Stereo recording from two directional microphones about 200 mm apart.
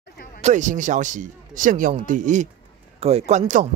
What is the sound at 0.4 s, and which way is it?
Speech, 35° right (ahead or behind).